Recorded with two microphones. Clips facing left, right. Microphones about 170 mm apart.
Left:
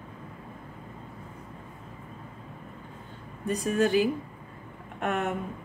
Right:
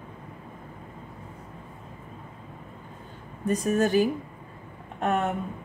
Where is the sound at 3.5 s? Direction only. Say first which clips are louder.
Right 2 dB; 45° right (ahead or behind).